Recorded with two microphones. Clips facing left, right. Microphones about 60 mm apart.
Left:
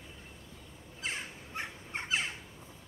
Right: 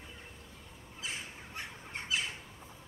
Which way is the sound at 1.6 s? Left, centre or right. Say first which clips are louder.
Left 4 dB; left.